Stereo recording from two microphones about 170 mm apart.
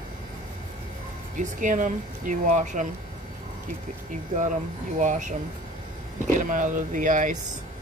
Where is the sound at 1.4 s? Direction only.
50° right (ahead or behind).